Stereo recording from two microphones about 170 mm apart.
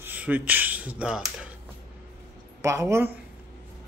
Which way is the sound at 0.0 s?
10° right (ahead or behind).